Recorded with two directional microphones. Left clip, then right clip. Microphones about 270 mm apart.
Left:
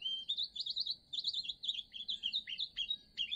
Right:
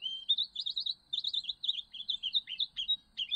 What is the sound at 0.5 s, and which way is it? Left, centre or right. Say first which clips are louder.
Chirp: right 3 dB; left.